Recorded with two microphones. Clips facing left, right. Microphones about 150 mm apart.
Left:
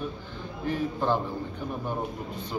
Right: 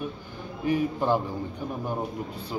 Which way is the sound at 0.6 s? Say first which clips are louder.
Right 3 dB; 10° right (ahead or behind).